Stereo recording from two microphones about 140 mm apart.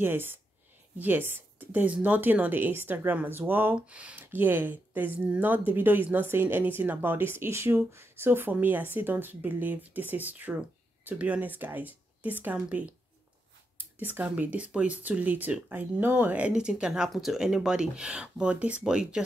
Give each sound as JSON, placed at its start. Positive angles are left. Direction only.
{"t": 0.0, "sound": "speech", "side_deg": -15}